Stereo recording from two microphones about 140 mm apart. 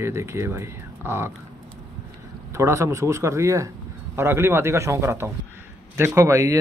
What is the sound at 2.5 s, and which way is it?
Speech, 20° right (ahead or behind).